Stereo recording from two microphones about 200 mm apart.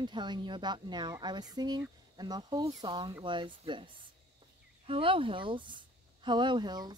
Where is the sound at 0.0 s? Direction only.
20° right (ahead or behind).